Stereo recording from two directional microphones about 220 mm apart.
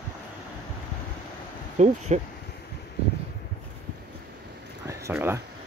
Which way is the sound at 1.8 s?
30° right (ahead or behind).